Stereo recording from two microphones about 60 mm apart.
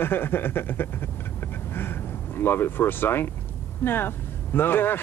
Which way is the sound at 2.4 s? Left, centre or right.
Left.